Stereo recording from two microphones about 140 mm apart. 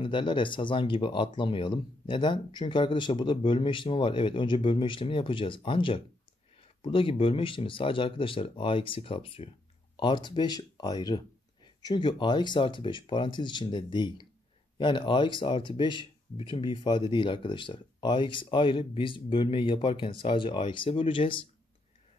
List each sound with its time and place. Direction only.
0.0 s speech: 35° left (ahead or behind)